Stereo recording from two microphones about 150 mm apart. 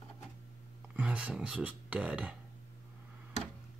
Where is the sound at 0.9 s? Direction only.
10° right (ahead or behind).